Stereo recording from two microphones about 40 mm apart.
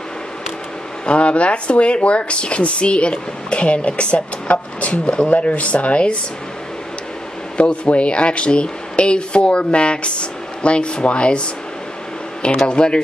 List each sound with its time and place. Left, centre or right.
1.0 s speech: left
7.5 s speech: left
12.6 s speech: left